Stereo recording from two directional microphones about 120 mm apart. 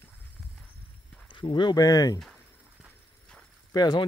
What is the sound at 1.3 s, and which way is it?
Speech, 45° left (ahead or behind).